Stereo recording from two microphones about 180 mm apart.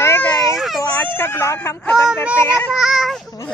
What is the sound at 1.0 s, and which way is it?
Speech, 10° left (ahead or behind).